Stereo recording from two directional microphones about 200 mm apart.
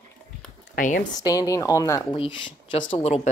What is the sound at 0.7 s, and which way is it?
Speech, 45° left (ahead or behind).